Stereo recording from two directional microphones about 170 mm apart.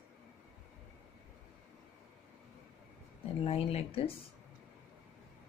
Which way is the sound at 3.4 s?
35° left (ahead or behind).